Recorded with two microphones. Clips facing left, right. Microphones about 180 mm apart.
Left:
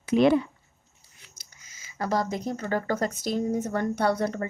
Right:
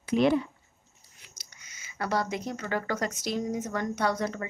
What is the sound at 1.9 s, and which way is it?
A woman's voice, 40° left (ahead or behind).